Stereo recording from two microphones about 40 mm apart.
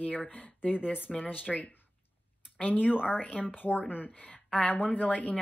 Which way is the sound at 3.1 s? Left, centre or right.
Left.